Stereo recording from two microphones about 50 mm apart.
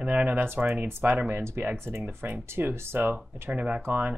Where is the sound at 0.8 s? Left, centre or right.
Right.